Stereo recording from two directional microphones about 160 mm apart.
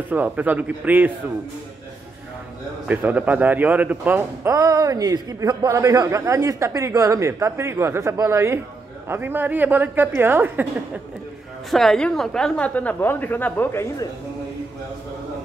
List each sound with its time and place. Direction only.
0.1 s a man's voice: 10° right (ahead or behind)
2.9 s a man's voice: 10° right (ahead or behind)
11.7 s a woman's voice: centre (ahead or behind)